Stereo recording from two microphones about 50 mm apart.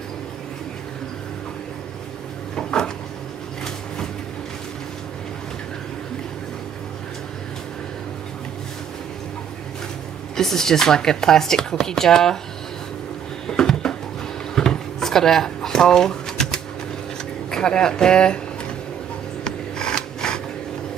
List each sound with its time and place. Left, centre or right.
2.5 s a sound: centre
10.3 s speech: centre
13.5 s music: centre
14.5 s drawer open or close: centre
17.5 s speech: centre
19.4 s a sound: centre